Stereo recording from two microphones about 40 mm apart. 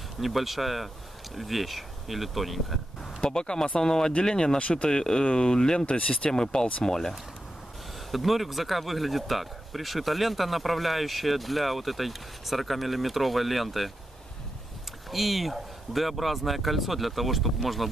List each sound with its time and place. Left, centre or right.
0.2 s speech: centre
3.2 s speech: centre
4.6 s speech: left
4.8 s speech: centre
8.1 s speech: centre
15.0 s speech: centre